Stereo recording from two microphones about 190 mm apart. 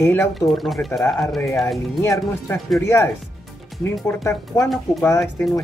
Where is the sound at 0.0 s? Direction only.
10° left (ahead or behind).